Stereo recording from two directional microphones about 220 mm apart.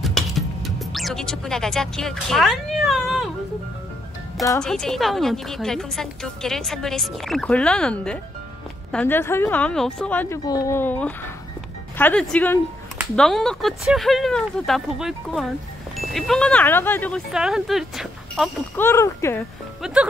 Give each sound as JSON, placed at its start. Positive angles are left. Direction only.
{"t": 0.0, "sound": "speech", "side_deg": 0}
{"t": 4.6, "sound": "a woman's voice", "side_deg": 5}
{"t": 17.3, "sound": "speech", "side_deg": -5}
{"t": 18.8, "sound": "a woman's voice", "side_deg": 10}
{"t": 19.8, "sound": "speech", "side_deg": -5}